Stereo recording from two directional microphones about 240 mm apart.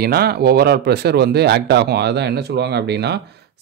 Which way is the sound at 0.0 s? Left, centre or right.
Right.